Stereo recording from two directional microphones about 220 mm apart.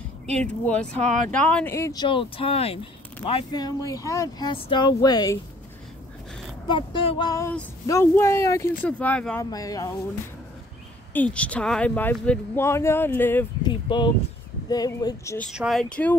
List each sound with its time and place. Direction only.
0.4 s speech: 5° left (ahead or behind)
1.0 s speech: 35° right (ahead or behind)
1.3 s speech: 5° left (ahead or behind)
6.7 s speech: 20° left (ahead or behind)
11.1 s speech: 5° left (ahead or behind)
13.7 s speech: 20° left (ahead or behind)
15.5 s speech: centre (ahead or behind)